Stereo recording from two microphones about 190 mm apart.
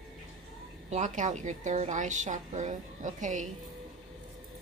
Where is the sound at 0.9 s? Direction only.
40° right (ahead or behind).